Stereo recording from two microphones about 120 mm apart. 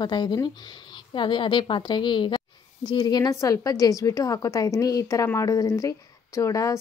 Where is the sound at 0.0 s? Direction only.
35° left (ahead or behind).